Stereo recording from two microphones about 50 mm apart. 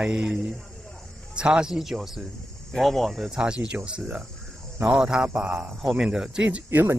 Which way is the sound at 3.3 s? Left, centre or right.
Centre.